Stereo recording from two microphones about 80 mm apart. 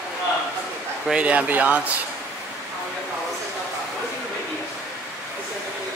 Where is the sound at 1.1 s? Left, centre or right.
Centre.